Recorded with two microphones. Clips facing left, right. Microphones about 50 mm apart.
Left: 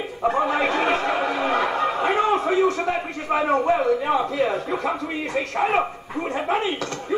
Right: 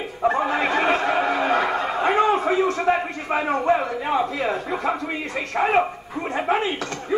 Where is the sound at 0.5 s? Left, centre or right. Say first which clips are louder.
Right 1 dB; centre.